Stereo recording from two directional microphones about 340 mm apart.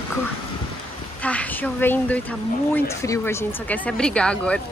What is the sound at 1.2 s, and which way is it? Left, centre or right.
A woman's voice, centre.